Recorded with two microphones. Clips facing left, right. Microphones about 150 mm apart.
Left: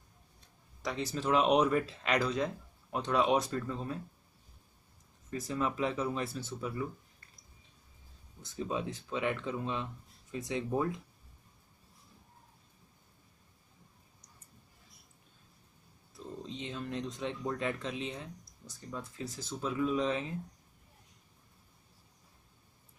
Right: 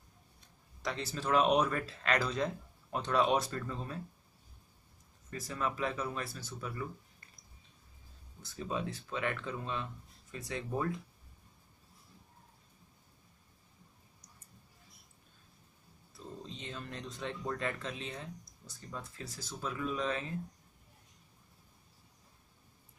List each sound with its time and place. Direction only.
0.8 s speech: 10° left (ahead or behind)
5.3 s speech: 20° left (ahead or behind)
8.4 s speech: 15° left (ahead or behind)
16.5 s speech: 15° left (ahead or behind)
19.2 s speech: 20° left (ahead or behind)